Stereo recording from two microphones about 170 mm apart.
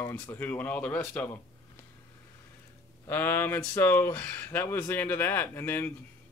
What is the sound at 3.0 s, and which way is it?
Speech, 10° left (ahead or behind).